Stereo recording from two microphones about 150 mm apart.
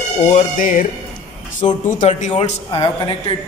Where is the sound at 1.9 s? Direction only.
55° left (ahead or behind); by 2.9 s 40° left (ahead or behind).